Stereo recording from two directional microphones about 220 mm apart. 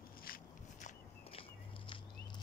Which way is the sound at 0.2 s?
40° left (ahead or behind).